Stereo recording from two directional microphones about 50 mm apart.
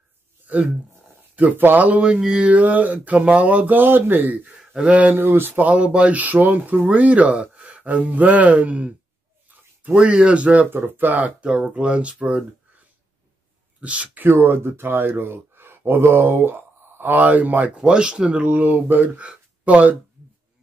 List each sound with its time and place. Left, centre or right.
0.5 s speech: right; by 2.4 s centre
2.4 s speech: right
4.7 s speech: right
5.1 s speech: right
5.7 s speech: right
9.9 s speech: right
10.7 s speech: right
13.7 s speech: right
14.2 s speech: right
17.8 s speech: centre; by 19.2 s right
19.2 s a sound: right